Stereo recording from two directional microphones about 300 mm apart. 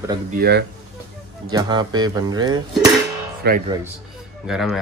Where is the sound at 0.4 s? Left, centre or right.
Right.